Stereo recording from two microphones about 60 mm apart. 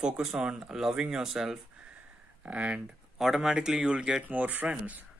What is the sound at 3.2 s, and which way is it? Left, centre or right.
Speech, centre.